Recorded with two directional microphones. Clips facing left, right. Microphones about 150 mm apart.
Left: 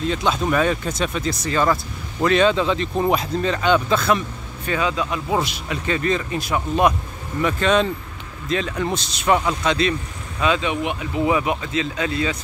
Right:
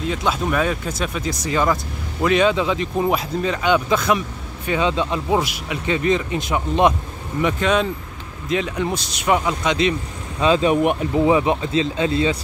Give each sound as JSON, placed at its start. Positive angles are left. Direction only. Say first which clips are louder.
{"t": 0.0, "sound": "speech", "louder": "left 1 dB", "side_deg": -5}
{"t": 4.6, "sound": "speech", "louder": "right 2 dB", "side_deg": -25}
{"t": 5.3, "sound": "speech", "louder": "right 1 dB", "side_deg": -10}
{"t": 7.4, "sound": "speech", "louder": "left 1 dB", "side_deg": -10}
{"t": 10.4, "sound": "speech", "louder": "right 5 dB", "side_deg": -35}
{"t": 11.1, "sound": "speech", "louder": "right 2 dB", "side_deg": -30}